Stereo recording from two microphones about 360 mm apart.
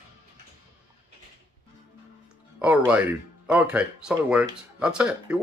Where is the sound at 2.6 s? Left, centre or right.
Centre.